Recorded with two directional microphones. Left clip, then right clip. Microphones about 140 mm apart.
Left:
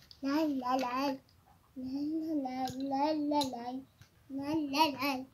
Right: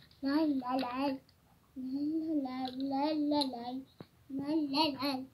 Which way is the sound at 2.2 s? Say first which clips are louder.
Left 1 dB; 10° left (ahead or behind).